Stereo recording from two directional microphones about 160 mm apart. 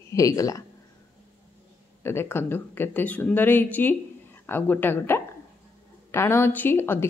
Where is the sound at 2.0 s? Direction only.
15° left (ahead or behind).